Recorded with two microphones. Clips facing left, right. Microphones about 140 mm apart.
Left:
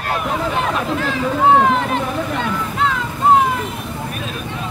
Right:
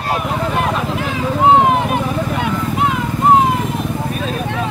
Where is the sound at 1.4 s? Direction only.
20° right (ahead or behind).